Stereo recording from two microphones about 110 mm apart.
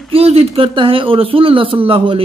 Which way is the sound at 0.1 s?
65° right (ahead or behind).